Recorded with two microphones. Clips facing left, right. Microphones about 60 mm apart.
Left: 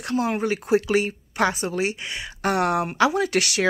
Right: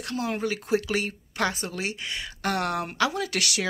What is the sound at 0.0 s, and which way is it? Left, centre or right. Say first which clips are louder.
A woman's voice: left 5 dB; left.